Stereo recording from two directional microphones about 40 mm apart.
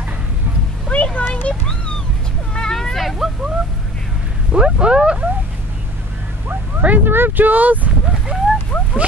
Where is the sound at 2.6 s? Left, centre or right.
Centre.